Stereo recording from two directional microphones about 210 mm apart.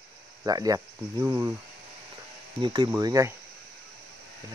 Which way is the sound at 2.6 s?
20° right (ahead or behind).